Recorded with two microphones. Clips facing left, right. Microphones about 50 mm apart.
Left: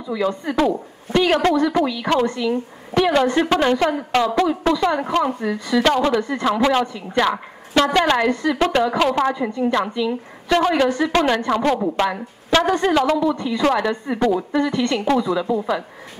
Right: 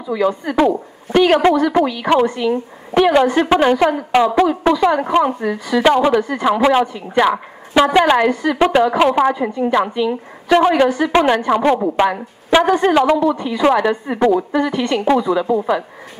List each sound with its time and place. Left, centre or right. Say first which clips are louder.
0.1 s a woman's voice: right 4 dB; centre